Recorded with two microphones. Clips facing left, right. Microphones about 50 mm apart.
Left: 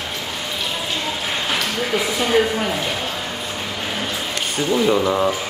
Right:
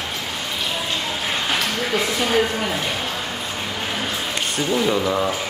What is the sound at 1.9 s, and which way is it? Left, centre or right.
Speech, centre.